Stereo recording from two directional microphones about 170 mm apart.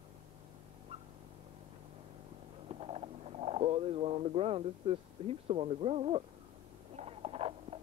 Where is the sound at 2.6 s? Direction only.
35° right (ahead or behind).